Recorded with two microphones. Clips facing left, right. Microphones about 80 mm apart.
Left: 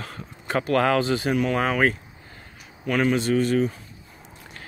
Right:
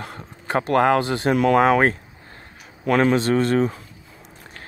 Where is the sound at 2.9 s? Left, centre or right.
Right.